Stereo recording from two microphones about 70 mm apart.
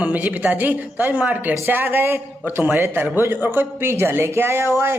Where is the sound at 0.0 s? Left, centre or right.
Right.